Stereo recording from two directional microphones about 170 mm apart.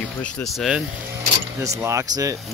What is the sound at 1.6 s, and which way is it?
Speech, 15° right (ahead or behind).